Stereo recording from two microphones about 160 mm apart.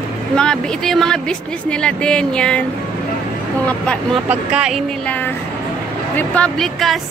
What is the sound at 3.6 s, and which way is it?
Speech, 5° left (ahead or behind).